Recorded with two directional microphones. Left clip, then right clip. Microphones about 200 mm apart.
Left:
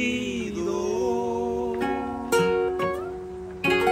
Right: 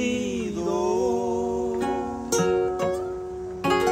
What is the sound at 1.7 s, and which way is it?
Music, 10° left (ahead or behind).